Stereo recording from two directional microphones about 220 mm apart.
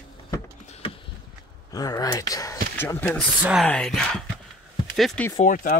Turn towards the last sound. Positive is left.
turn(degrees=40)  # may be behind; listen again after turning